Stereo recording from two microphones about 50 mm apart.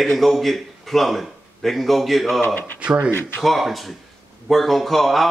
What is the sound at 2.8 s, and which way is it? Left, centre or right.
Speech, right.